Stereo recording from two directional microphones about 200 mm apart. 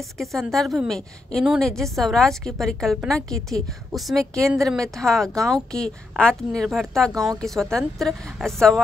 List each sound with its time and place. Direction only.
0.2 s a woman's voice: centre (ahead or behind)